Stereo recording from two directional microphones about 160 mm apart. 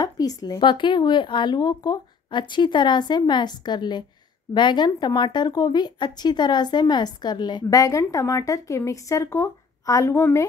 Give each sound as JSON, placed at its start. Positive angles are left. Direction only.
{"t": 0.0, "sound": "speech", "side_deg": 25}